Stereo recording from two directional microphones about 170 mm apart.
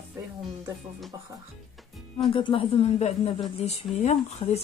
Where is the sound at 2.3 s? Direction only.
30° left (ahead or behind).